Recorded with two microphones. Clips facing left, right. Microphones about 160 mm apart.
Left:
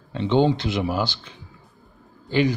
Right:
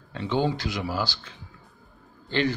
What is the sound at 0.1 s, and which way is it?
Speech, 25° left (ahead or behind).